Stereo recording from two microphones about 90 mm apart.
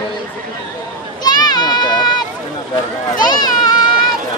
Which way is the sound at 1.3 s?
50° left (ahead or behind).